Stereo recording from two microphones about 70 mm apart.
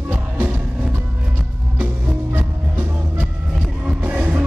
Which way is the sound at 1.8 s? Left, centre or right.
Right.